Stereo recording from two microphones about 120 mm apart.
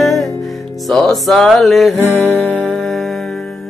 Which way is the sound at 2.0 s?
15° left (ahead or behind).